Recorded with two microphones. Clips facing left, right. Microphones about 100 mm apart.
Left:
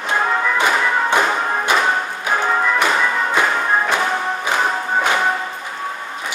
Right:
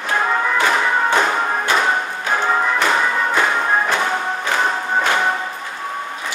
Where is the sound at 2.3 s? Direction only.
10° left (ahead or behind).